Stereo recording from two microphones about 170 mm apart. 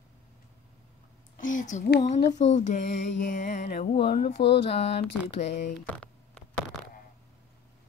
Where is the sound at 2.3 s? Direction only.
45° left (ahead or behind).